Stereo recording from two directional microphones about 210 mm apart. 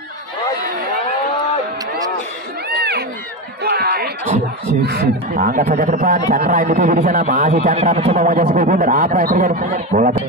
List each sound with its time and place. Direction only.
2.8 s run: 50° right (ahead or behind)
3.6 s a sound: 50° right (ahead or behind)
4.8 s speech: 45° right (ahead or behind)